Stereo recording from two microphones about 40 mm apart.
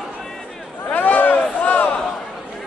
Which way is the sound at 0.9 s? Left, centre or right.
Left.